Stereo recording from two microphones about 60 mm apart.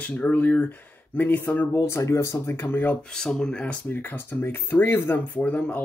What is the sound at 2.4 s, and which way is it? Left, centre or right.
Speech, left.